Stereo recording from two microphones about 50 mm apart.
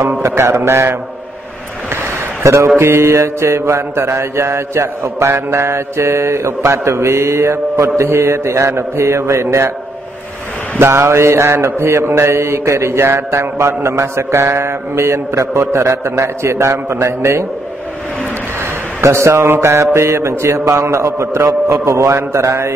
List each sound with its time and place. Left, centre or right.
0.2 s mantra: right
2.4 s mantra: right
2.8 s mantra: right
10.8 s mantra: right
12.4 s mantra: right
19.0 s mantra: right